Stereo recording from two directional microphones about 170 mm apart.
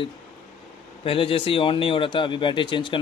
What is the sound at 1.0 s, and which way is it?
Speech, 30° left (ahead or behind).